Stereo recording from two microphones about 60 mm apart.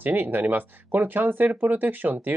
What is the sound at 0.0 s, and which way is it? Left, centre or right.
Speech, right.